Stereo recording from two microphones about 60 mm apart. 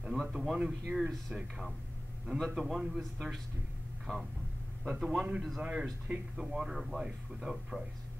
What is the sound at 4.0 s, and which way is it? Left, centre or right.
Speech, centre.